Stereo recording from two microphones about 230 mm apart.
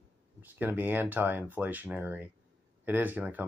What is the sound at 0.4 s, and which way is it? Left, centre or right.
Speech, centre.